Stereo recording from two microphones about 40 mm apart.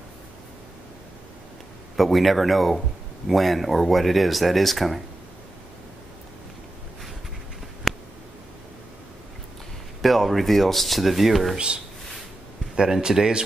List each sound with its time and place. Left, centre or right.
2.0 s speech: centre
7.9 s a sound: centre
10.0 s speech: centre
11.5 s speech: right